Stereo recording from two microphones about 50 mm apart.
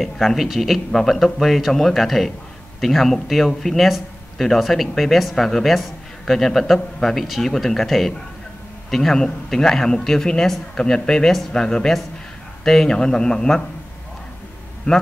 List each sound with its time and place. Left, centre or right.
0.0 s speech: centre
14.9 s speech: left